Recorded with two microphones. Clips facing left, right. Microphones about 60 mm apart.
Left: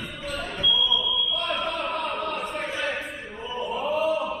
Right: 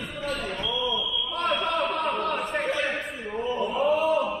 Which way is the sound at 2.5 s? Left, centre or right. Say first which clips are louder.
Right 2 dB; right.